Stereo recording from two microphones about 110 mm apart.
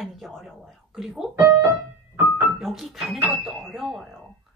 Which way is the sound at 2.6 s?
Centre (ahead or behind).